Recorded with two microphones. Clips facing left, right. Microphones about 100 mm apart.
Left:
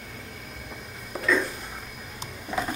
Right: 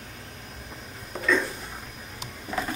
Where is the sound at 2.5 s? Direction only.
5° left (ahead or behind).